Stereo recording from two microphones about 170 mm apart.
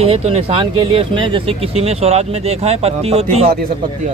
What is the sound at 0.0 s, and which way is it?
Speech, 35° right (ahead or behind).